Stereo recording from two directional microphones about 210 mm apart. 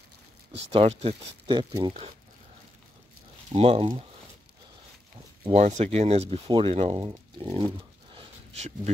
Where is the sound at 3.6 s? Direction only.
30° right (ahead or behind).